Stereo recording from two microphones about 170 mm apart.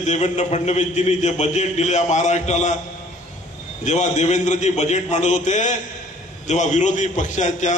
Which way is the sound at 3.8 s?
45° left (ahead or behind).